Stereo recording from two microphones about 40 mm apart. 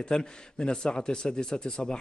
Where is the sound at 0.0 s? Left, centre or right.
Centre.